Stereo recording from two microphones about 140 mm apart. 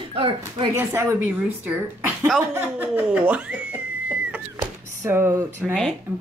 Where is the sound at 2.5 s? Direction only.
10° right (ahead or behind).